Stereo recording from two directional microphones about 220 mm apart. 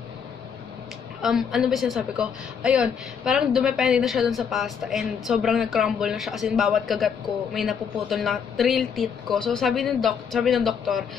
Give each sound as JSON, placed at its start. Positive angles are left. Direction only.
{"t": 1.2, "sound": "a woman's voice", "side_deg": 0}